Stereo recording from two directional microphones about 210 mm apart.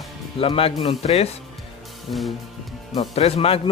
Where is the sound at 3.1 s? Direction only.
30° left (ahead or behind).